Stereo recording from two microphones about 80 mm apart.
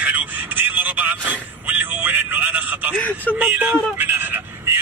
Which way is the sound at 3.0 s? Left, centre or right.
Left.